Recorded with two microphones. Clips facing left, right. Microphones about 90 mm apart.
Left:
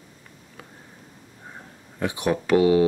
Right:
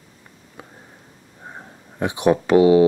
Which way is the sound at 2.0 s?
25° right (ahead or behind).